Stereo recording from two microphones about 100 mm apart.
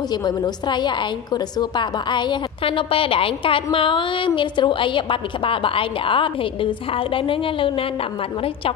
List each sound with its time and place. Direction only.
0.1 s a woman's voice: 45° left (ahead or behind); by 7.8 s 60° left (ahead or behind)